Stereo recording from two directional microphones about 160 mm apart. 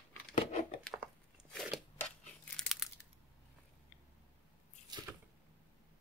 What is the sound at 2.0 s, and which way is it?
Crumpling, 5° left (ahead or behind).